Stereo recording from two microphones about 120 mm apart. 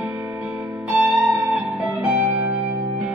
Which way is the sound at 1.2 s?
5° right (ahead or behind).